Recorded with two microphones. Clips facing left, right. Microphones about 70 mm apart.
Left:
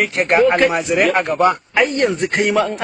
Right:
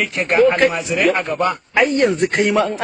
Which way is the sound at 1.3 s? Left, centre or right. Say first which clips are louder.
Left 3 dB; centre.